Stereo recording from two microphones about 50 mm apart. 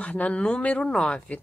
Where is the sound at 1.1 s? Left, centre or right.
Left.